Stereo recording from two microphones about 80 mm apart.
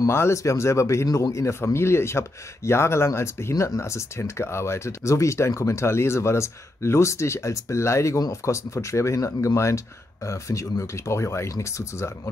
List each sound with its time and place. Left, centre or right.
0.1 s speech: left